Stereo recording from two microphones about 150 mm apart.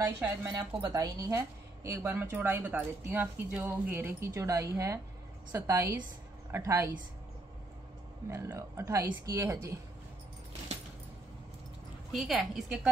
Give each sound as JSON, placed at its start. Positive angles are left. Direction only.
{"t": 0.2, "sound": "a woman's voice", "side_deg": -20}
{"t": 8.3, "sound": "a woman's voice", "side_deg": -20}
{"t": 12.1, "sound": "a woman's voice", "side_deg": 0}